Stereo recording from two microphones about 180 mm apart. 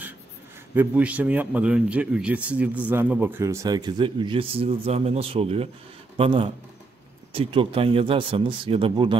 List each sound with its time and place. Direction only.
0.7 s a man's voice: 10° right (ahead or behind); by 9.2 s 30° right (ahead or behind)